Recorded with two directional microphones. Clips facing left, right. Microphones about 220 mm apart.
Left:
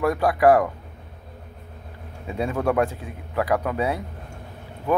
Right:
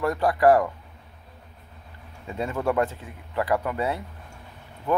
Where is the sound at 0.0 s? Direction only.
10° left (ahead or behind).